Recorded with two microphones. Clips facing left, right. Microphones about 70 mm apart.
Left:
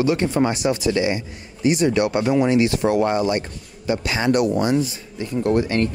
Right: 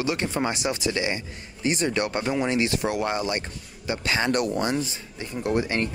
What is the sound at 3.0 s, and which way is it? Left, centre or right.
Speech, left.